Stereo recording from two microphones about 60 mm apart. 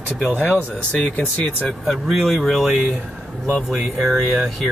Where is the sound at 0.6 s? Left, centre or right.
Left.